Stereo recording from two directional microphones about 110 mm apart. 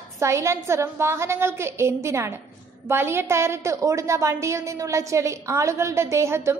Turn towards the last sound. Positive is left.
turn(degrees=-25)  # may be behind; listen again after turning